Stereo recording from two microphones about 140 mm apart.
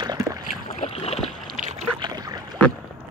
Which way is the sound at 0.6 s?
45° left (ahead or behind).